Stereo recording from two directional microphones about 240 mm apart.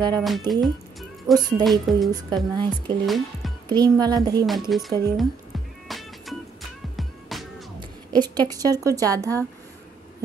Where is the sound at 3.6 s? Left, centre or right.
Centre.